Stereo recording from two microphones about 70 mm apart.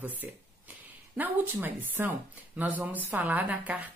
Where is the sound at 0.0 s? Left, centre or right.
Right.